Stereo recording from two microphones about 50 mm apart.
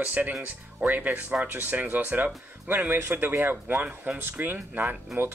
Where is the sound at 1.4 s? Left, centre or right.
Right.